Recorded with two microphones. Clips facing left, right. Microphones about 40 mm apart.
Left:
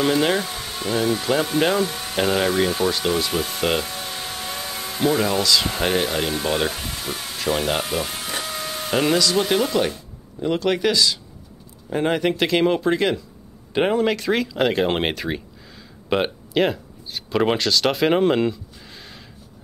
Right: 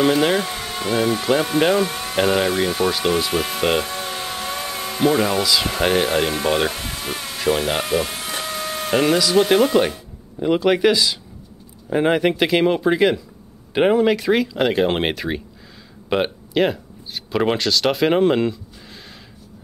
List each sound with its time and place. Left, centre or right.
0.0 s speech: centre
0.5 s a sound: right
0.9 s speech: centre
2.1 s speech: centre
2.8 s speech: centre
3.8 s a sound: right
6.5 s speech: centre
7.3 s a sound: centre
8.9 s speech: centre